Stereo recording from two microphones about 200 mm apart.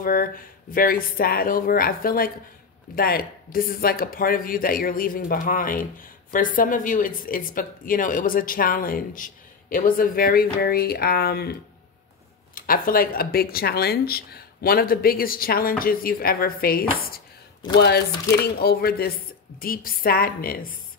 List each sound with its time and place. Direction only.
0.0 s speech: 45° left (ahead or behind)
12.5 s speech: 45° left (ahead or behind)